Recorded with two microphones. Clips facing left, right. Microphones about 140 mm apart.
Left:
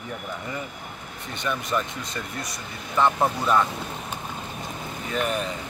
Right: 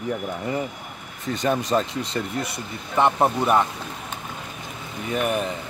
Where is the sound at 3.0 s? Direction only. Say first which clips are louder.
Right 2 dB; 20° right (ahead or behind).